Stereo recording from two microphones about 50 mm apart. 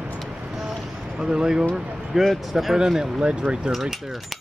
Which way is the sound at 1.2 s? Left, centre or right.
Centre.